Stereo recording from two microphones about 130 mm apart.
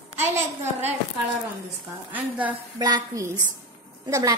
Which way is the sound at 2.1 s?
10° right (ahead or behind).